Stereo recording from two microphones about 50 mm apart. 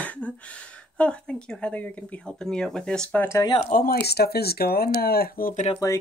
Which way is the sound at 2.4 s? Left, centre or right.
Centre.